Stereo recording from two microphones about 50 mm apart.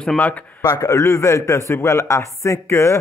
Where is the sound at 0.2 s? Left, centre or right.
Left.